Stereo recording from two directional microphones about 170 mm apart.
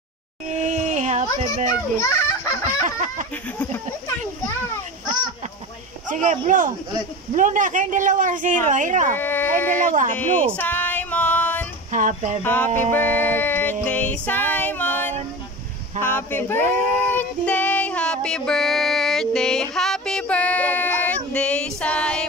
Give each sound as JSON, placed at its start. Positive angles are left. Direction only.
{"t": 0.5, "sound": "a sound", "side_deg": -45}
{"t": 2.0, "sound": "a child's voice", "side_deg": 20}
{"t": 2.8, "sound": "speech", "side_deg": -45}
{"t": 6.0, "sound": "speech", "side_deg": -50}
{"t": 9.1, "sound": "speech", "side_deg": 10}
{"t": 10.1, "sound": "a sound", "side_deg": 10}
{"t": 11.9, "sound": "speech", "side_deg": -45}
{"t": 12.4, "sound": "speech", "side_deg": 10}
{"t": 12.9, "sound": "music", "side_deg": 10}
{"t": 16.0, "sound": "speech", "side_deg": 10}
{"t": 17.1, "sound": "child singing", "side_deg": 10}